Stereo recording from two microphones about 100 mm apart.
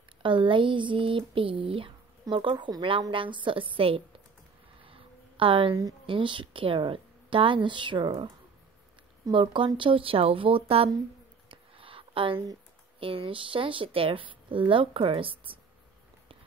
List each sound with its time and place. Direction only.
0.2 s speech: 55° right (ahead or behind)
4.8 s a sound: 65° right (ahead or behind)
6.0 s speech: 55° right (ahead or behind)
9.3 s speech: 60° right (ahead or behind)
11.4 s a sound: 60° right (ahead or behind)
13.0 s speech: 65° right (ahead or behind)